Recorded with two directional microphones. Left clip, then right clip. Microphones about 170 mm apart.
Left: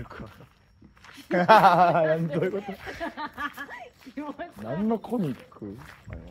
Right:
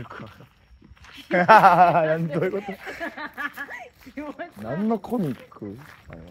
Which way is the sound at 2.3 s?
35° right (ahead or behind).